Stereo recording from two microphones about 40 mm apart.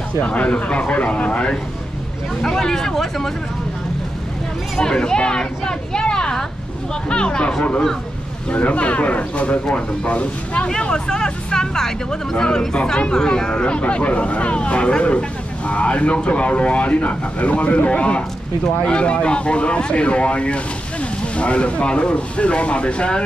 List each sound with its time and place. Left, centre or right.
0.2 s speech: left
2.4 s speech: centre
4.7 s speech: centre
10.8 s speech: centre